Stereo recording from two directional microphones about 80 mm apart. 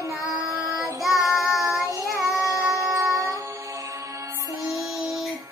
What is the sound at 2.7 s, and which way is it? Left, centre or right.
Music, right.